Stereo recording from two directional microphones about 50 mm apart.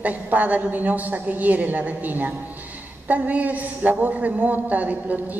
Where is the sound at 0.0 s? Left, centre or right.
Right.